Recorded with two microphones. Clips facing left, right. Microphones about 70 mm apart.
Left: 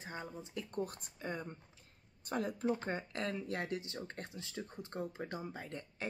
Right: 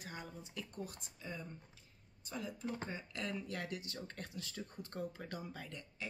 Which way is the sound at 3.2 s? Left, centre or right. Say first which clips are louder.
Even; left.